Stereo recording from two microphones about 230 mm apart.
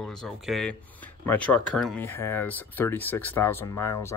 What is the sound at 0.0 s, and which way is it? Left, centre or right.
Speech, centre.